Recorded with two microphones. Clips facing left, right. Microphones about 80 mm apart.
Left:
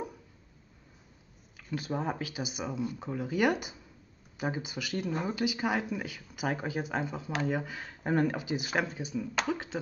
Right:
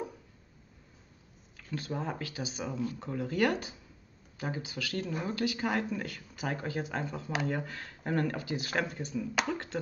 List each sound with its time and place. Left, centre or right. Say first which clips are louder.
1.7 s speech: left 3 dB; centre